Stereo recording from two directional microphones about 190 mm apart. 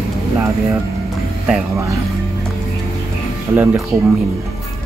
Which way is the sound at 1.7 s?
15° right (ahead or behind).